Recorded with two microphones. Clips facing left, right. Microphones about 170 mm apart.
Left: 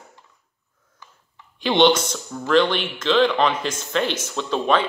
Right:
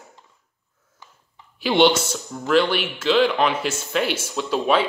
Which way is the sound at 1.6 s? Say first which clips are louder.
Even; 10° right (ahead or behind).